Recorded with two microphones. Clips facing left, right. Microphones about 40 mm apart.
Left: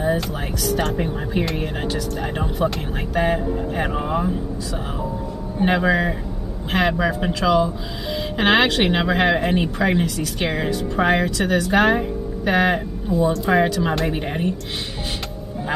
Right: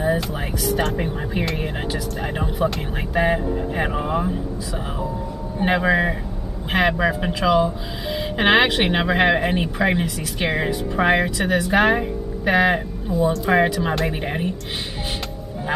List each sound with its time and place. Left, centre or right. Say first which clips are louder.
0.0 s speech: even; centre
5.6 s speech: even; centre